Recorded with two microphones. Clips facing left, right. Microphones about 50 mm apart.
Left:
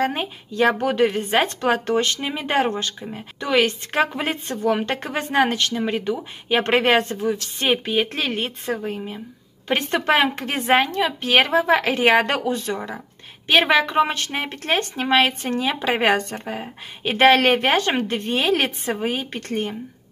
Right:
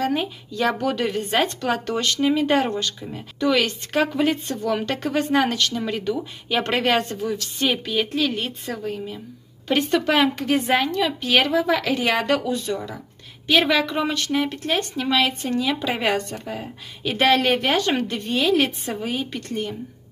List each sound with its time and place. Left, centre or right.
0.0 s speech: left
8.1 s a woman's voice: left
8.4 s speech: left